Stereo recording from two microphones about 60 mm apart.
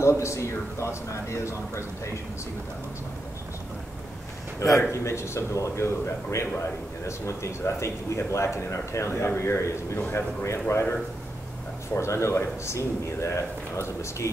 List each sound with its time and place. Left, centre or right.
0.0 s speech: left
4.6 s a man's voice: left
7.1 s speech: left
12.0 s speech: left